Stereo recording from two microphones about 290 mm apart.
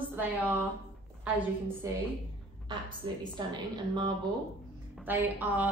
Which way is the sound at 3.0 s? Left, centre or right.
Centre.